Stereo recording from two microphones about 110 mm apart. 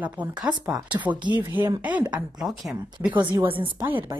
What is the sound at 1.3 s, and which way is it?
A woman's voice, 15° right (ahead or behind).